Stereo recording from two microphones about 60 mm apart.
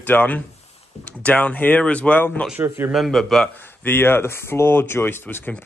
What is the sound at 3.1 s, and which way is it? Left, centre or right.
Speech, centre.